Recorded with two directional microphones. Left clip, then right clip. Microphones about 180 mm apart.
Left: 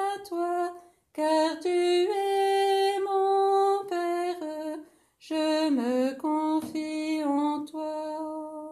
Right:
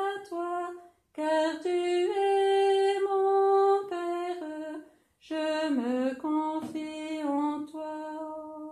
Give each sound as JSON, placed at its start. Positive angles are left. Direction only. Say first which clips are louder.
{"t": 0.0, "sound": "a sound", "louder": "left 3 dB", "side_deg": 40}
{"t": 1.1, "sound": "music", "louder": "left 3 dB", "side_deg": 40}
{"t": 5.3, "sound": "mantra", "louder": "left 3 dB", "side_deg": 45}